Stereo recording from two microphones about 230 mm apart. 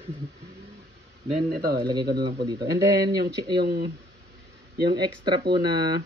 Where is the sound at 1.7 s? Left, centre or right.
Centre.